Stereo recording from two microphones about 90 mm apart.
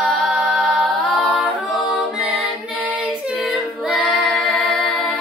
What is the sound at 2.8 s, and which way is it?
Child singing, 15° right (ahead or behind).